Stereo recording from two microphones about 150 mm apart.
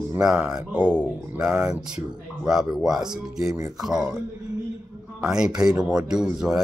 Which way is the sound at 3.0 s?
25° right (ahead or behind).